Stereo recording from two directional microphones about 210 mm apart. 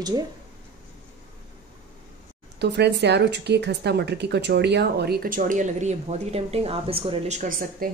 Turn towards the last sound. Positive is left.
turn(degrees=-40)  # may be behind; listen again after turning